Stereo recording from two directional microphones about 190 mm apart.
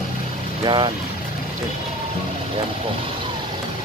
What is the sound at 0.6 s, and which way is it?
Speech, 25° right (ahead or behind).